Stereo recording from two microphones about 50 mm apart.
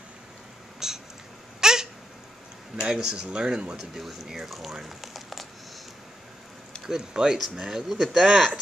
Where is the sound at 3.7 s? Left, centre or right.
Centre.